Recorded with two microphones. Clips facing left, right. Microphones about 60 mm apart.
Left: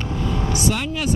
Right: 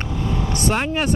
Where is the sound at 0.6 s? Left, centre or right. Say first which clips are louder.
Right 5 dB; right.